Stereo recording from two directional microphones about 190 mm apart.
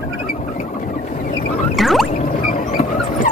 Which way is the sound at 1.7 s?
Centre (ahead or behind).